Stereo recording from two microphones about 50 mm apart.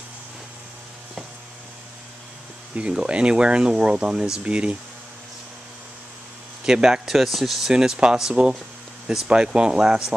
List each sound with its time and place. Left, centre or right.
2.7 s speech: centre
6.6 s speech: centre
7.7 s speech: centre